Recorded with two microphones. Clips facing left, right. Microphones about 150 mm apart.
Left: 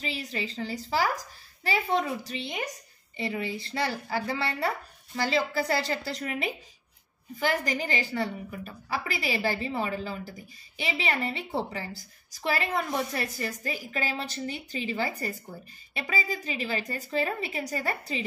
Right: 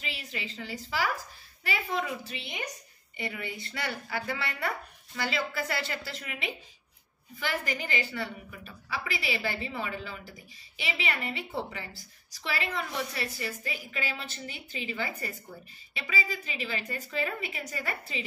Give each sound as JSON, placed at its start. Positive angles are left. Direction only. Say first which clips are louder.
{"t": 0.0, "sound": "a woman's voice", "louder": "left 6 dB", "side_deg": 35}